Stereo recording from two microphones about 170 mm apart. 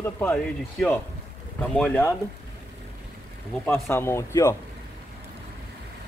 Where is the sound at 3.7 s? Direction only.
15° left (ahead or behind).